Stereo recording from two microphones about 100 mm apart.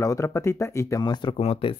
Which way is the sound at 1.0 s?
45° left (ahead or behind).